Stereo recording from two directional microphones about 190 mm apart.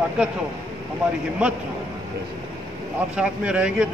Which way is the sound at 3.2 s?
5° right (ahead or behind).